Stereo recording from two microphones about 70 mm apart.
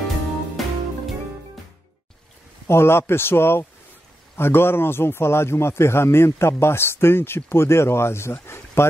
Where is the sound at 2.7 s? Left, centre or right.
Left.